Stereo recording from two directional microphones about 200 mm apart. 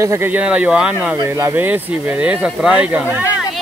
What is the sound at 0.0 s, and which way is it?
Speech, 15° right (ahead or behind).